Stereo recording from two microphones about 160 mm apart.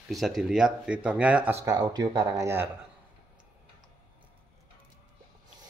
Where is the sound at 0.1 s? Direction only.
Centre (ahead or behind); by 2.7 s 15° right (ahead or behind).